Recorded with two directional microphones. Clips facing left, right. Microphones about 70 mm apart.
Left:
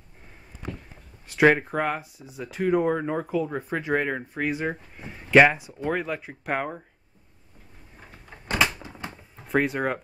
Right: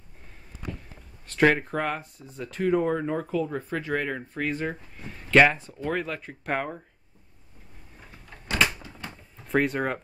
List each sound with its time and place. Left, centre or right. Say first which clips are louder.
1.2 s speech: left 2 dB; centre
8.8 s typewriter: left 3 dB; centre
9.5 s speech: left 1 dB; centre